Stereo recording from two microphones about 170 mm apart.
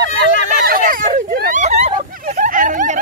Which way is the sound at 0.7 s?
55° right (ahead or behind).